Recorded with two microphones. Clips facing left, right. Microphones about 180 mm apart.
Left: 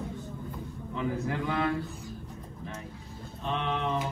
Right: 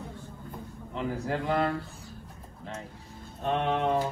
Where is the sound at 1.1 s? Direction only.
35° right (ahead or behind).